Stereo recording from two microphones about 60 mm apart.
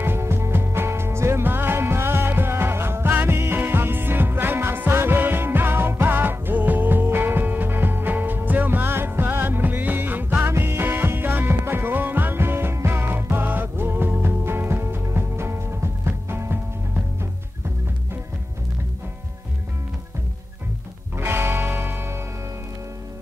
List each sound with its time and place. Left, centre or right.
0.0 s music: right
10.4 s music: right
21.2 s music: right